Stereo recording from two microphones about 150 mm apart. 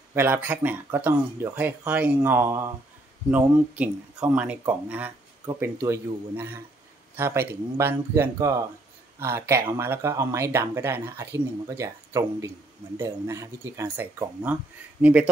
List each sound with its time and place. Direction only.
0.1 s speech: 15° right (ahead or behind)